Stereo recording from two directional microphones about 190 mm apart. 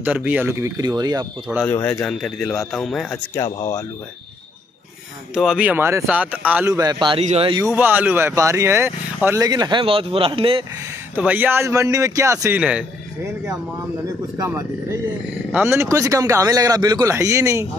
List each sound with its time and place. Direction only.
0.0 s speech: 5° right (ahead or behind)
1.6 s speech: 10° left (ahead or behind)
3.3 s speech: 15° left (ahead or behind)
5.3 s speech: 5° right (ahead or behind); by 7.6 s 30° right (ahead or behind)
7.6 s speech: 10° right (ahead or behind); by 10.6 s 30° right (ahead or behind)
11.1 s speech: 10° right (ahead or behind)
14.0 s speech: 20° right (ahead or behind)